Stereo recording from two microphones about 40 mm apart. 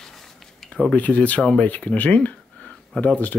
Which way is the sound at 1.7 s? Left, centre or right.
Left.